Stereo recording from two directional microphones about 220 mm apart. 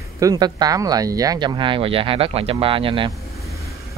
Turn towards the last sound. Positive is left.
turn(degrees=-25)  # may be behind; listen again after turning